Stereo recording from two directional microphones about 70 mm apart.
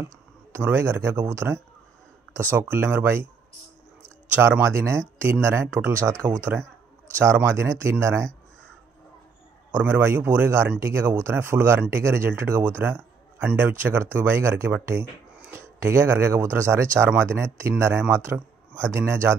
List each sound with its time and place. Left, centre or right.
0.6 s speech: right
2.5 s speech: right
4.4 s a man's voice: right
7.4 s speech: right
9.7 s a man's voice: right